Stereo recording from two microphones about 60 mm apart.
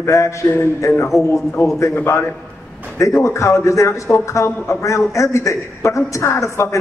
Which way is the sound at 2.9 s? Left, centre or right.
Left.